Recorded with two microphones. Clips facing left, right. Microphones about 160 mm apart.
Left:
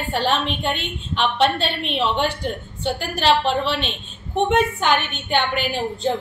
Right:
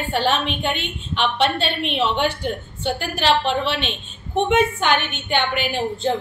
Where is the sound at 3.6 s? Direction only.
40° left (ahead or behind).